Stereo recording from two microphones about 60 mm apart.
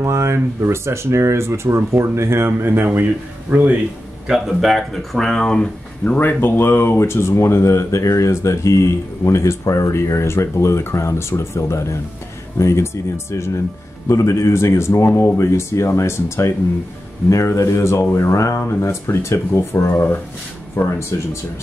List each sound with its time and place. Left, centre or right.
0.0 s speech: right
4.3 s speech: centre
6.0 s speech: left
17.6 s speech: left
18.6 s speech: left